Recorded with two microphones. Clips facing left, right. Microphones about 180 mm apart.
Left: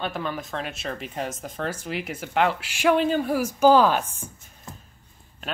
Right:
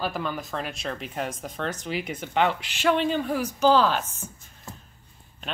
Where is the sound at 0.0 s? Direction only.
Centre (ahead or behind).